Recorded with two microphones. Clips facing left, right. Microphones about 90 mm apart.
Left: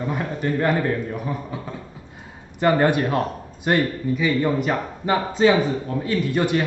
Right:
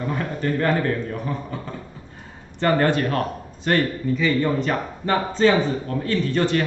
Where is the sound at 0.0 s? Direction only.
15° left (ahead or behind).